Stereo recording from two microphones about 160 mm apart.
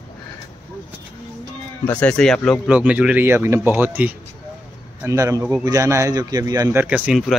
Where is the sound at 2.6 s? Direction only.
10° right (ahead or behind).